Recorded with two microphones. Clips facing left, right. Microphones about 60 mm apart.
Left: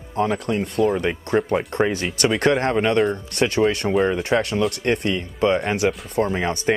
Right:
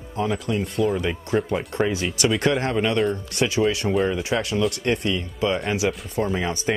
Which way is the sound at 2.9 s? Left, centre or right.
Centre.